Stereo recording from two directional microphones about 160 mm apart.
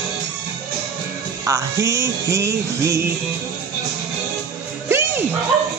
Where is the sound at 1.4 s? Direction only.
20° right (ahead or behind).